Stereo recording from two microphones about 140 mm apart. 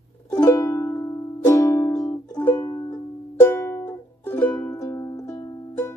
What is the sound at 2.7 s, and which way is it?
Music, 25° left (ahead or behind).